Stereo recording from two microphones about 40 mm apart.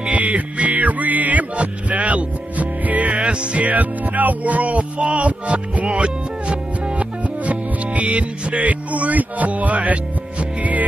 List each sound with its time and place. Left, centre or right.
0.1 s music: right
5.9 s speech: right
10.6 s music: right